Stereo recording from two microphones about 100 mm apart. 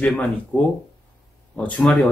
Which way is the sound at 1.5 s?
15° left (ahead or behind).